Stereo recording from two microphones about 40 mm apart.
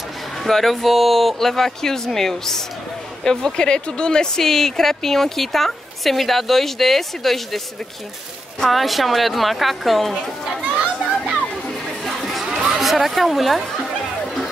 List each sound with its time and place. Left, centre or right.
0.4 s speech: centre
3.5 s speech: left; by 7.6 s centre
8.6 s speech: centre
12.0 s a sound: centre
14.2 s music: centre